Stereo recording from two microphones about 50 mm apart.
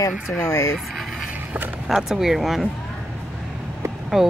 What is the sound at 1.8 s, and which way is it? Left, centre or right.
Speech, centre.